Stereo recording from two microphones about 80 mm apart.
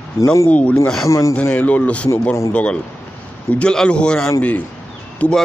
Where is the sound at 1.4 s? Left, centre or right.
Centre.